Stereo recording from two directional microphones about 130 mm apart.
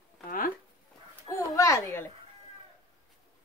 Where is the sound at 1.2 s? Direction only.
25° left (ahead or behind).